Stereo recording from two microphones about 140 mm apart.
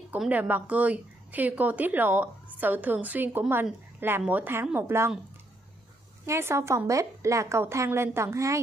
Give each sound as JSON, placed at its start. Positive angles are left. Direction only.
{"t": 0.2, "sound": "speech", "side_deg": -10}
{"t": 6.2, "sound": "a woman's voice", "side_deg": -20}